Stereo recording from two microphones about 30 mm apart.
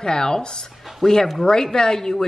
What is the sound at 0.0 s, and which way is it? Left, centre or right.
Speech, left.